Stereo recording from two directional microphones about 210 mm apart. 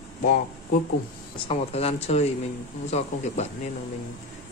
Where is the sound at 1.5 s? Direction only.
30° left (ahead or behind).